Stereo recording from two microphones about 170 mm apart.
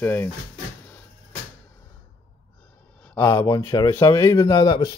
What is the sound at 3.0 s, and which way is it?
Speech, 10° left (ahead or behind).